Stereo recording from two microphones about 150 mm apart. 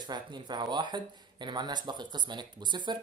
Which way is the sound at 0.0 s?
30° right (ahead or behind).